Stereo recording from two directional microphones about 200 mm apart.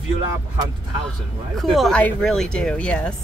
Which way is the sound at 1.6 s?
Centre (ahead or behind).